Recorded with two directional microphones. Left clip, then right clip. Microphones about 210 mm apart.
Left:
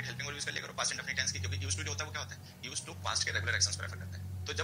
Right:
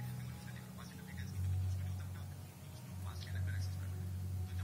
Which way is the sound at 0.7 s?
50° left (ahead or behind).